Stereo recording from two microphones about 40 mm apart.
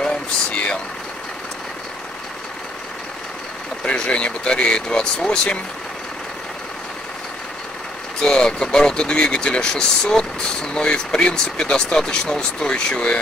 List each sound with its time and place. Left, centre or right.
0.0 s vehicle: left
3.8 s speech: left
8.2 s speech: centre